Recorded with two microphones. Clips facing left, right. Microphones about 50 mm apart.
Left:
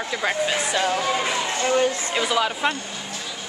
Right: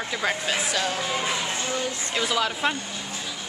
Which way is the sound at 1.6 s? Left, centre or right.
Left.